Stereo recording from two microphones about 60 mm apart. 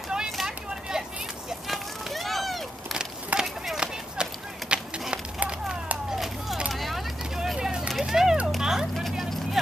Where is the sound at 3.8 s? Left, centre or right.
Centre.